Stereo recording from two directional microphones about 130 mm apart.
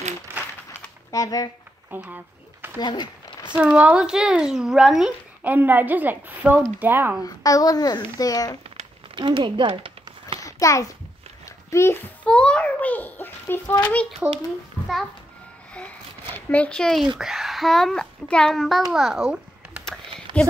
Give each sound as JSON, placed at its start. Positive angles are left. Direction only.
{"t": 1.1, "sound": "a child's voice", "side_deg": 30}
{"t": 1.9, "sound": "a sound", "side_deg": -15}
{"t": 2.8, "sound": "speech", "side_deg": 35}
{"t": 3.5, "sound": "speech", "side_deg": -10}
{"t": 5.5, "sound": "speech", "side_deg": -15}
{"t": 7.2, "sound": "a child's voice", "side_deg": 25}
{"t": 9.1, "sound": "speech", "side_deg": -35}
{"t": 10.4, "sound": "a child's voice", "side_deg": 25}
{"t": 11.4, "sound": "a sound", "side_deg": 20}
{"t": 12.3, "sound": "a child's voice", "side_deg": 10}
{"t": 15.7, "sound": "a sound", "side_deg": 10}
{"t": 17.2, "sound": "a child's voice", "side_deg": 0}